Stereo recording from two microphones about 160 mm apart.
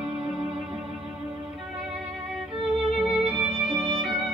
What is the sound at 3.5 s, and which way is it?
Music, 35° right (ahead or behind).